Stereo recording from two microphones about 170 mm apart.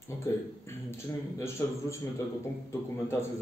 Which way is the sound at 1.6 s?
15° left (ahead or behind).